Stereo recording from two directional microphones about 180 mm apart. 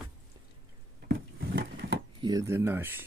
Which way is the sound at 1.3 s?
90° right.